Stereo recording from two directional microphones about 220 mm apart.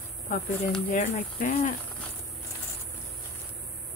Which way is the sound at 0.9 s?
40° left (ahead or behind).